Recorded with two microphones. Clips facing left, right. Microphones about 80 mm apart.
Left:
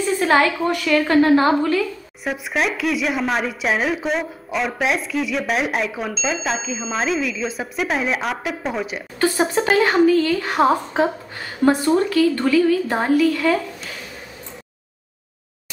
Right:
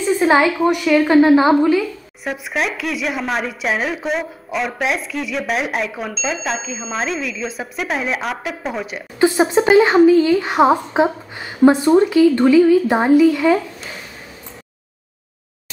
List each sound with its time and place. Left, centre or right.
0.2 s a woman's voice: centre
2.2 s speech: centre
9.2 s a woman's voice: centre